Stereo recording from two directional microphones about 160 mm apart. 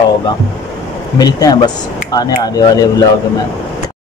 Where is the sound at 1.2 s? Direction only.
25° left (ahead or behind).